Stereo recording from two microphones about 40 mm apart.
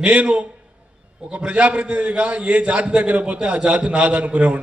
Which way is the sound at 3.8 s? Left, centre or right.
Right.